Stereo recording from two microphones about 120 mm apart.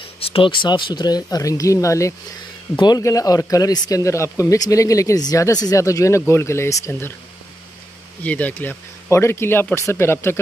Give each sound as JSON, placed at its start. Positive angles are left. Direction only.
{"t": 0.2, "sound": "a man's voice", "side_deg": 50}
{"t": 8.2, "sound": "a man's voice", "side_deg": 10}